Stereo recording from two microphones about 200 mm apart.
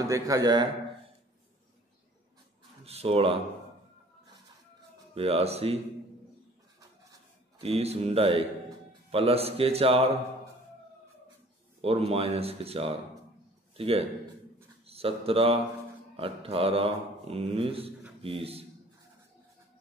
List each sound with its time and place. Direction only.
0.1 s speech: 20° right (ahead or behind)
2.8 s speech: 30° right (ahead or behind)
5.1 s speech: 30° right (ahead or behind)
7.6 s speech: 30° right (ahead or behind)
11.8 s a man's voice: 30° right (ahead or behind)